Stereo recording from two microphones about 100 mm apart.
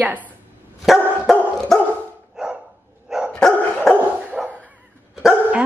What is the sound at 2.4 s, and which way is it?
Dog, 5° right (ahead or behind).